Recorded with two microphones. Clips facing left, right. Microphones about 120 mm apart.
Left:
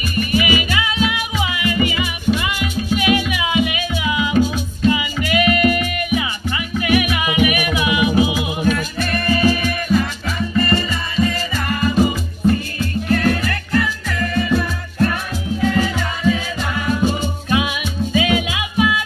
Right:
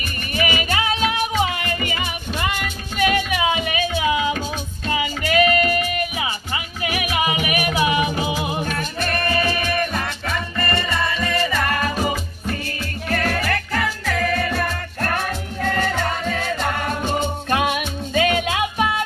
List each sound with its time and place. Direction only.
0.3 s music: 40° right (ahead or behind)
8.6 s music: 45° right (ahead or behind)
13.1 s music: 75° right (ahead or behind); by 19.0 s 45° right (ahead or behind)